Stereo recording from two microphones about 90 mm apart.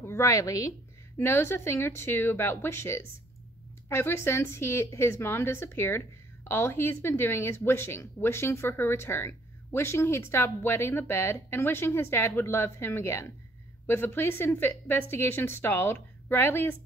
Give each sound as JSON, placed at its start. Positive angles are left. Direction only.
{"t": 0.0, "sound": "a woman's voice", "side_deg": 30}